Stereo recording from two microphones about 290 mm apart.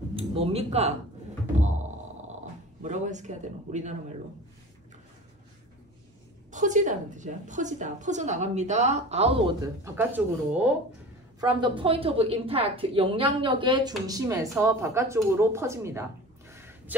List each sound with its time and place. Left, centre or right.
0.1 s speech: centre
1.6 s a sound: right
2.8 s a woman's voice: right
6.5 s a woman's voice: right; by 10.7 s centre
11.6 s a woman's voice: centre